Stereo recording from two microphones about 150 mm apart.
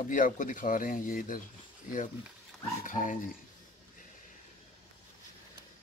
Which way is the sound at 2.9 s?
60° left (ahead or behind).